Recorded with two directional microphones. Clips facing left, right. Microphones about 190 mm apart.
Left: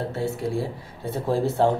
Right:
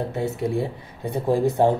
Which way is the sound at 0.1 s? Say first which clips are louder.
Right 2 dB; 20° right (ahead or behind).